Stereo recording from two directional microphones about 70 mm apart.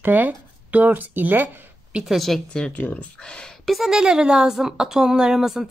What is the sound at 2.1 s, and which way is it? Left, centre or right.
Speech, centre.